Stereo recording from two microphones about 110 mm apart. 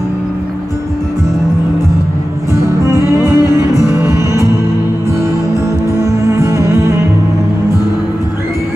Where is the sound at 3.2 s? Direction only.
30° left (ahead or behind).